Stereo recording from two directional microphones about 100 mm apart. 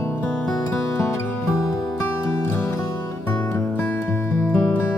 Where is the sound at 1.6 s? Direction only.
30° left (ahead or behind).